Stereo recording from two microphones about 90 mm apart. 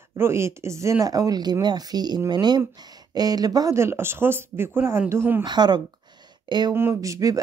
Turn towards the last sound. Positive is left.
turn(degrees=-40)  # may be behind; listen again after turning